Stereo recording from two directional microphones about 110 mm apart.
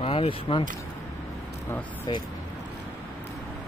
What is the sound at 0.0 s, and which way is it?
Speech, 60° left (ahead or behind).